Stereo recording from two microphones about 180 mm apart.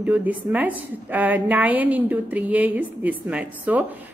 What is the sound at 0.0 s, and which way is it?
A woman's voice, 10° right (ahead or behind).